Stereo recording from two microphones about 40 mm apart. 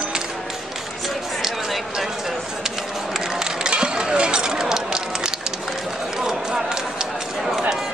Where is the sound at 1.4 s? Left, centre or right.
Centre.